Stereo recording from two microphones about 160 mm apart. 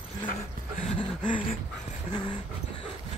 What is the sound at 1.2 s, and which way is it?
Dog, 30° left (ahead or behind).